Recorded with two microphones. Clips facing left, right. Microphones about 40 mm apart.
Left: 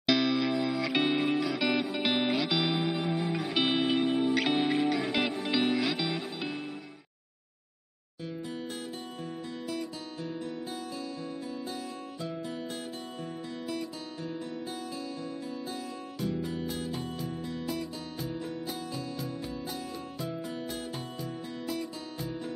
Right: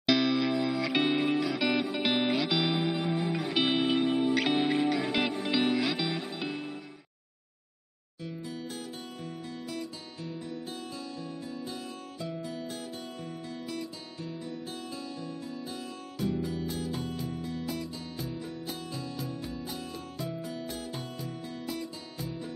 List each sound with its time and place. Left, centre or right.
0.0 s music: centre
9.7 s music: left
16.2 s music: centre